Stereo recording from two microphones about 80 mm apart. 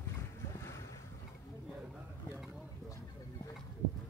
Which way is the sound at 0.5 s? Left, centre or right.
Left.